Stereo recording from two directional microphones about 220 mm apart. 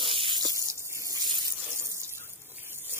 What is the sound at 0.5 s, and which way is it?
Water, 15° right (ahead or behind).